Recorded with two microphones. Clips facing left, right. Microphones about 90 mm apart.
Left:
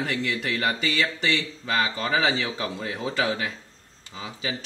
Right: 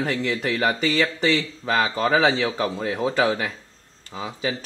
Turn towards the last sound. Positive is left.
turn(degrees=-45)  # may be behind; listen again after turning